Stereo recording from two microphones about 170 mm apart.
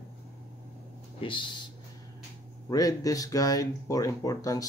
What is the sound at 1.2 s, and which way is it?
Speech, 30° left (ahead or behind).